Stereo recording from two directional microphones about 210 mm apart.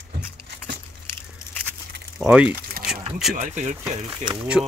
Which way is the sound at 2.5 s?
45° right (ahead or behind).